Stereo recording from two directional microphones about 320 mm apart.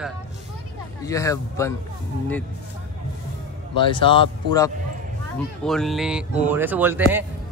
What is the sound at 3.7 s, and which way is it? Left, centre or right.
Speech, centre.